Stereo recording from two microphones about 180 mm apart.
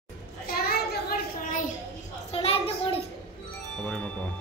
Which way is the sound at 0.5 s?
60° left (ahead or behind).